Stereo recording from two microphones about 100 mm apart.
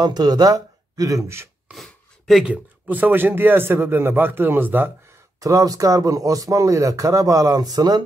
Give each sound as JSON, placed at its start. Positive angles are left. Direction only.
{"t": 0.0, "sound": "speech", "side_deg": -40}
{"t": 1.7, "sound": "a sound", "side_deg": 0}
{"t": 2.5, "sound": "a man's voice", "side_deg": -15}
{"t": 5.4, "sound": "speech", "side_deg": -35}